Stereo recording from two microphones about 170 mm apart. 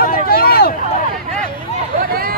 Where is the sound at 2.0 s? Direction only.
60° right (ahead or behind).